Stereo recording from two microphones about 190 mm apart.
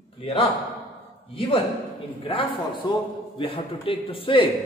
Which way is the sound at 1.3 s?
25° left (ahead or behind).